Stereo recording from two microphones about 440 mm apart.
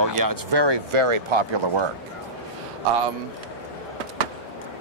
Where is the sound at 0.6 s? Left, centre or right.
Right.